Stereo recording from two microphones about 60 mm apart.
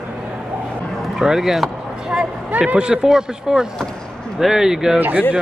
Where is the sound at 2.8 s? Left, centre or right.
Centre.